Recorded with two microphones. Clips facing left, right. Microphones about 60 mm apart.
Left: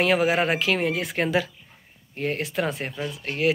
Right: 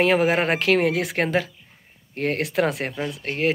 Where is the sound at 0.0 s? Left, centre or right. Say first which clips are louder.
Right 2 dB; right.